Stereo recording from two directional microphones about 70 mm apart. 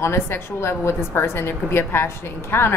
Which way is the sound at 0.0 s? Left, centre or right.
Left.